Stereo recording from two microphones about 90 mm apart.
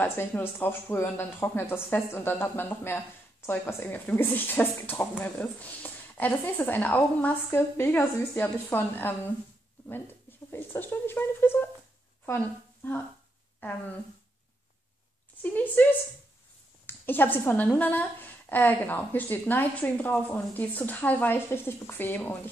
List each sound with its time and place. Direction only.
0.0 s a woman's voice: 20° left (ahead or behind)
10.5 s a woman's voice: 25° left (ahead or behind)
15.4 s a woman's voice: 20° left (ahead or behind)